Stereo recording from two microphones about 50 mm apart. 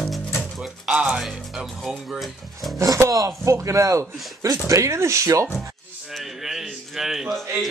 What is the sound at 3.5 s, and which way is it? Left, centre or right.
Speech, right.